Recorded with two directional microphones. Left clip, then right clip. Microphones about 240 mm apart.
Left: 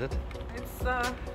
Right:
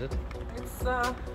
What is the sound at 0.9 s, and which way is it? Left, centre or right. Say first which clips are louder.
Music: right 1 dB; centre.